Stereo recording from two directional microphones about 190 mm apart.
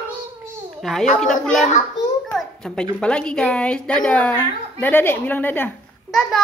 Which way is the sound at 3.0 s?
5° left (ahead or behind).